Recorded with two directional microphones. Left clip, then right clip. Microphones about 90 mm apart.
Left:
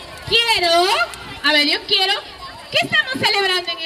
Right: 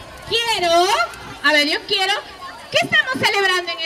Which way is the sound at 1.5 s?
25° right (ahead or behind).